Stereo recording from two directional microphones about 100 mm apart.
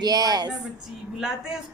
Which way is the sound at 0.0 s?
40° right (ahead or behind).